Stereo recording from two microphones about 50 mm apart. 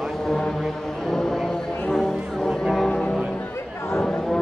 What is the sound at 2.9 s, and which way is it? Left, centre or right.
Music, left.